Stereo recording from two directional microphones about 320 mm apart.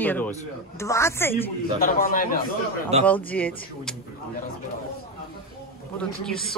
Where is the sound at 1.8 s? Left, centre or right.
Left.